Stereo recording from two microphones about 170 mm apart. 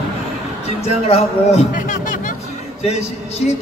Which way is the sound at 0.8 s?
35° left (ahead or behind).